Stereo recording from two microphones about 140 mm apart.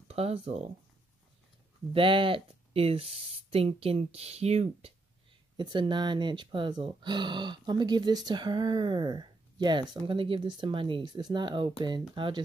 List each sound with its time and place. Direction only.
0.1 s speech: 45° right (ahead or behind)
1.9 s speech: 40° right (ahead or behind)
5.6 s speech: 35° right (ahead or behind)